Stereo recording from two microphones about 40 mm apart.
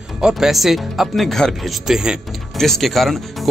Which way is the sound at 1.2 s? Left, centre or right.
Centre.